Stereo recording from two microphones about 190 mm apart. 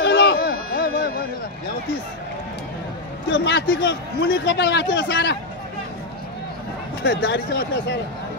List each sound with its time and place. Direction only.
0.0 s a sound: 60° left (ahead or behind)
3.3 s a man's voice: 65° left (ahead or behind)
7.0 s speech: 70° left (ahead or behind)